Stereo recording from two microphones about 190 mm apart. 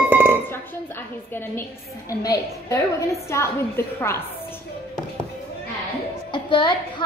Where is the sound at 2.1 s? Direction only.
20° left (ahead or behind).